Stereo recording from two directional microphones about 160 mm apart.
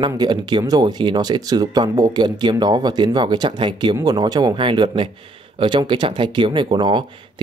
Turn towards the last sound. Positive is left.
turn(degrees=-30)  # may be behind; listen again after turning